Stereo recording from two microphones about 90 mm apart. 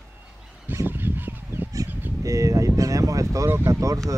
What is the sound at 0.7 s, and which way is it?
Fowl, 25° right (ahead or behind).